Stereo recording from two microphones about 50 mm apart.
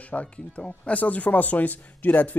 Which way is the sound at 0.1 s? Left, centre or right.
Left.